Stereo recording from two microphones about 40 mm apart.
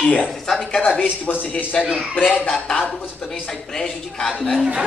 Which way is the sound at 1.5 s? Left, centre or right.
Left.